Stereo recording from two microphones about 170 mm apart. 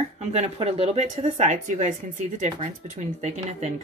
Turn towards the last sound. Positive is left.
turn(degrees=-40)  # may be behind; listen again after turning